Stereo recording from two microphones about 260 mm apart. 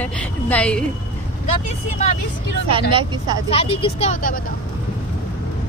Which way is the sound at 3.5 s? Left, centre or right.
Left.